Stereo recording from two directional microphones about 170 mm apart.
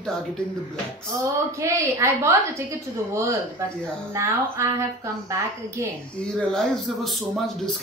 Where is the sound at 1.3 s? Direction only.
15° right (ahead or behind).